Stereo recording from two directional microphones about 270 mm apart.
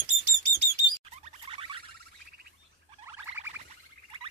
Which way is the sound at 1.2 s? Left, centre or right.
Centre.